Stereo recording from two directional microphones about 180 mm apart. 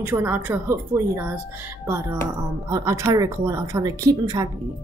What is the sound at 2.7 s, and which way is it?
A woman's voice, 15° right (ahead or behind).